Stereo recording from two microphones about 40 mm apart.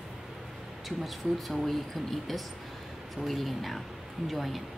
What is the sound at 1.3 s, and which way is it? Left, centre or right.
Speech, centre.